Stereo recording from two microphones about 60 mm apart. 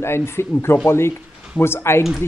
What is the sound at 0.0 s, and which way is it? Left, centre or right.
A woman's voice, left.